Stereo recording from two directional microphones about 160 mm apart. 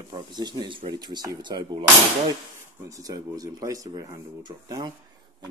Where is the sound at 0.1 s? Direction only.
25° right (ahead or behind).